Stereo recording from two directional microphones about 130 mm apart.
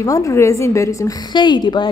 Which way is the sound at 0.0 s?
25° left (ahead or behind).